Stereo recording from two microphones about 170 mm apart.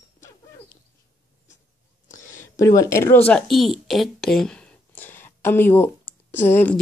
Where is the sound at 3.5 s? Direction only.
Centre (ahead or behind).